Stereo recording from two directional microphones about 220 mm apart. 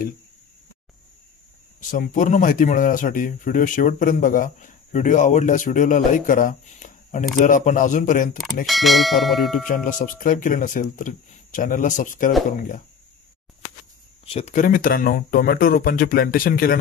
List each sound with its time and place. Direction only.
1.8 s speech: 35° left (ahead or behind)
8.6 s speech: centre (ahead or behind)
9.8 s speech: 35° left (ahead or behind)
14.2 s speech: 30° left (ahead or behind)